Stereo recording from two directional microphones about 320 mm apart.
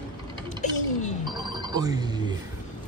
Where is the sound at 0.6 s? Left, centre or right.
Left.